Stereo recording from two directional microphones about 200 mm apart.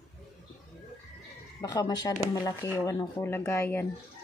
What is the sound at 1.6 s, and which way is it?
Speech, 20° left (ahead or behind).